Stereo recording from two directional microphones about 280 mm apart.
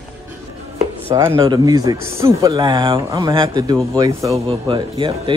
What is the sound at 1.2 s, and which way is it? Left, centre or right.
Speech, centre.